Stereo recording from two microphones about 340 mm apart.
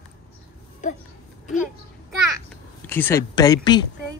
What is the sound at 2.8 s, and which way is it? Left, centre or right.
Speech, centre.